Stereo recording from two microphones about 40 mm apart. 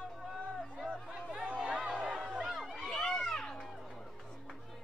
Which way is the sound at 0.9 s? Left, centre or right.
Right.